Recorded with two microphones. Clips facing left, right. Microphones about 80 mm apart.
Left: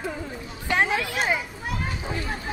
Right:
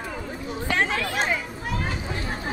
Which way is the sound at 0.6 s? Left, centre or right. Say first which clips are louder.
Left 2 dB; centre.